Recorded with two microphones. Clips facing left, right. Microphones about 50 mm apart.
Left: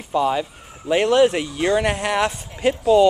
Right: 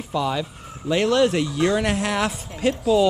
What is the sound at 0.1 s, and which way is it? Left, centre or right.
Speech, centre.